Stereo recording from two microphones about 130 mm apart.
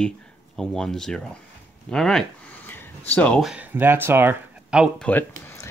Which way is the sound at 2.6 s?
15° left (ahead or behind).